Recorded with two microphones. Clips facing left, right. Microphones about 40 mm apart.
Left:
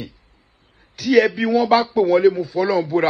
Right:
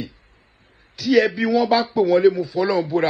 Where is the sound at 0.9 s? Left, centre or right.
Left.